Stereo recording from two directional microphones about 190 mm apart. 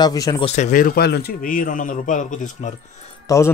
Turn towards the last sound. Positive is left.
turn(degrees=15)  # may be behind; listen again after turning